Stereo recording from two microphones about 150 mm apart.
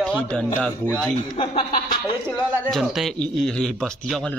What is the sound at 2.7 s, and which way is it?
A man's voice, centre (ahead or behind).